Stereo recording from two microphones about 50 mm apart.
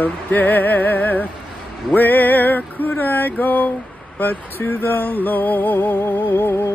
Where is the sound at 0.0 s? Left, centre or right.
Left.